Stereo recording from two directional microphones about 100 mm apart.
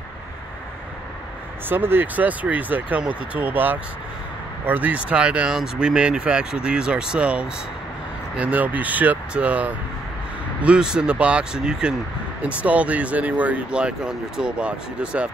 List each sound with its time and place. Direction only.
1.7 s speech: 20° right (ahead or behind)